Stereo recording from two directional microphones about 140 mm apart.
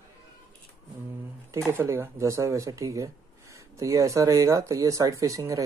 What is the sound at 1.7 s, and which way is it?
Speech, 20° right (ahead or behind).